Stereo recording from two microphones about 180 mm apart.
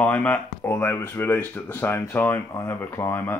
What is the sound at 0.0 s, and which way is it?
Speech, 10° left (ahead or behind).